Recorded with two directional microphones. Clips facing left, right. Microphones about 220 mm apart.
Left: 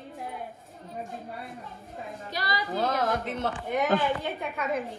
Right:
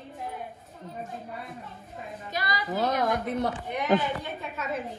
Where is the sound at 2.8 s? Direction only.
15° right (ahead or behind).